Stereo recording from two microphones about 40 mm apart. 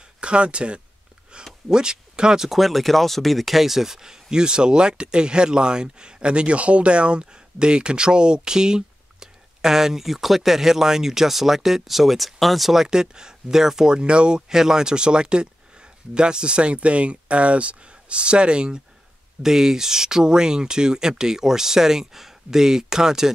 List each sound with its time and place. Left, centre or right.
0.2 s speech: right
1.3 s a sound: right
1.7 s speech: centre
2.5 s speech: centre
12.8 s speech: centre
19.4 s speech: centre